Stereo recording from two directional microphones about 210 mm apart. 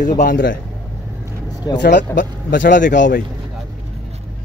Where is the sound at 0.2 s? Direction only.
40° left (ahead or behind).